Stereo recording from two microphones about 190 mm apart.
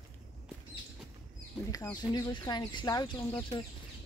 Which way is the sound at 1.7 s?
20° left (ahead or behind).